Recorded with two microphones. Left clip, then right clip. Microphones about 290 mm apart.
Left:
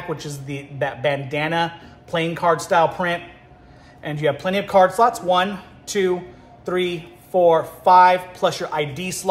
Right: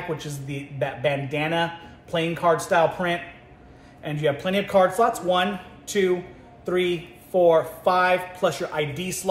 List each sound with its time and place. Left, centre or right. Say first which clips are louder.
0.2 s speech: left 3 dB; centre
6.6 s speech: left 1 dB; centre